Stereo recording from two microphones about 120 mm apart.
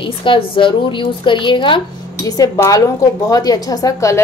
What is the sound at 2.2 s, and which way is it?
A woman's voice, 30° left (ahead or behind).